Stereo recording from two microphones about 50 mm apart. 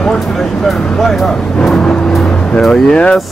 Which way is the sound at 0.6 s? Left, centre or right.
Centre.